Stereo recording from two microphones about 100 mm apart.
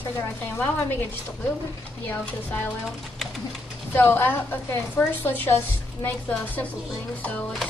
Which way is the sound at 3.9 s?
20° left (ahead or behind).